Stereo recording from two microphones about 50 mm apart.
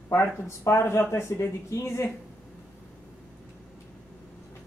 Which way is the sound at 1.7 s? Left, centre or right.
Left.